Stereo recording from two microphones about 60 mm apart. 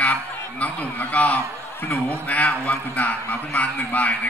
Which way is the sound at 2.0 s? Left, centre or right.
Left.